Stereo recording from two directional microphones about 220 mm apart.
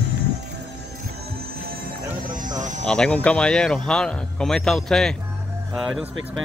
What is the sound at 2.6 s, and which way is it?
Music, 35° right (ahead or behind).